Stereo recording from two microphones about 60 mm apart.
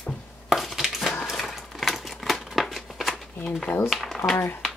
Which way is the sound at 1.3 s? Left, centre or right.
Centre.